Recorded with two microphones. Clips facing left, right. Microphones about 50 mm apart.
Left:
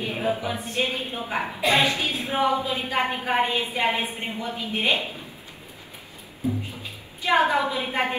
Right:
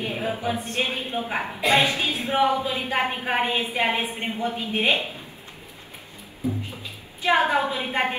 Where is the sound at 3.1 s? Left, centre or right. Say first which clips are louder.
Left 1 dB; right.